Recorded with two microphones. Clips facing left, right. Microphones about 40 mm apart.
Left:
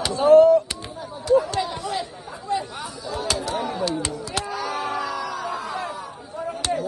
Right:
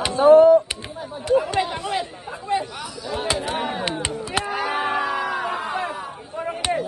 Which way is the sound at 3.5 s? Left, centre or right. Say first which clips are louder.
Even; right.